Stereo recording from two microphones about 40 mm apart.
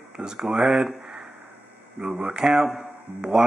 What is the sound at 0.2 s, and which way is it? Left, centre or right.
Speech, centre.